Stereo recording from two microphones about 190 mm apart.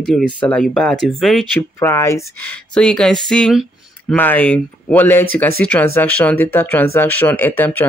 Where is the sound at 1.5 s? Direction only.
10° left (ahead or behind).